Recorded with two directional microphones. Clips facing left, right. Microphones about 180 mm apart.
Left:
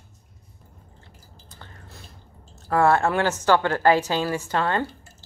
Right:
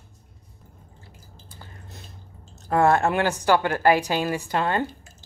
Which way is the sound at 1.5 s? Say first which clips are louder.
Right 1 dB; 20° right (ahead or behind).